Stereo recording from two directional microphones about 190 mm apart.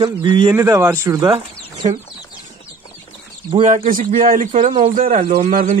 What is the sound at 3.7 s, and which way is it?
Speech, 45° right (ahead or behind).